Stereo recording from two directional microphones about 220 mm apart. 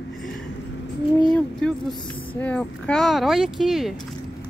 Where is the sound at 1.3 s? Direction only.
Centre (ahead or behind).